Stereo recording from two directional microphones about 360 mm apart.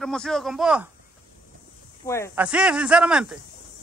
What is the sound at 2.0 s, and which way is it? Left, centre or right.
Speech, centre.